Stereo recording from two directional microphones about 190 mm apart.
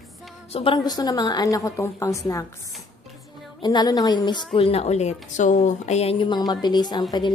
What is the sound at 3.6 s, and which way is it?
A woman's voice, 20° left (ahead or behind).